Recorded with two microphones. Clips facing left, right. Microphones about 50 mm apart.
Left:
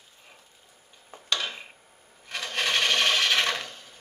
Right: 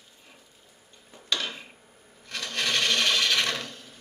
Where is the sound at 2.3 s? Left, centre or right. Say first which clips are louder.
Left 1 dB; centre.